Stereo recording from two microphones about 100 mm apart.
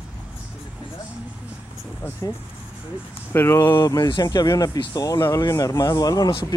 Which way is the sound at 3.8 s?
40° left (ahead or behind).